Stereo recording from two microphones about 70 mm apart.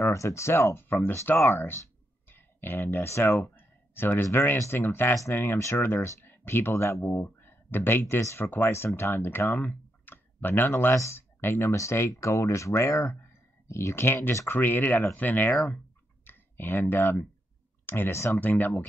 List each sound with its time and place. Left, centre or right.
0.0 s speech: left
8.2 s speech: left
8.5 s speech: left
18.4 s speech: left